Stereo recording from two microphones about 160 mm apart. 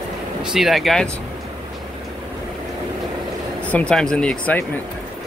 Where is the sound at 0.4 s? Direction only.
Centre (ahead or behind).